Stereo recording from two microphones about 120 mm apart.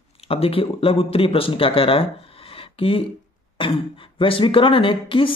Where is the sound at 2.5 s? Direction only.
50° left (ahead or behind).